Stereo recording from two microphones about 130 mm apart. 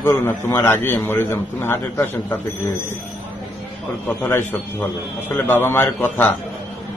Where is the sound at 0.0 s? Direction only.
15° left (ahead or behind).